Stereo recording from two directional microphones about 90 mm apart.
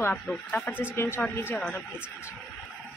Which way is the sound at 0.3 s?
10° left (ahead or behind).